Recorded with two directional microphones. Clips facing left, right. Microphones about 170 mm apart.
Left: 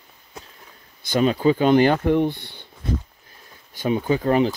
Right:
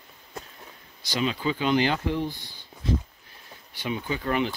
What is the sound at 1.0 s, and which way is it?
Speech, 50° left (ahead or behind).